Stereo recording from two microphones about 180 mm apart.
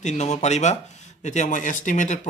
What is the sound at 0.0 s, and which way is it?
Speech, 40° left (ahead or behind).